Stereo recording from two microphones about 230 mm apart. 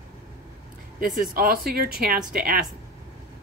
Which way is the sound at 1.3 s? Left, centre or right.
Right.